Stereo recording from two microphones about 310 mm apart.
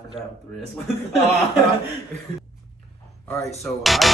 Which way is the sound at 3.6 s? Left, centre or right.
Centre.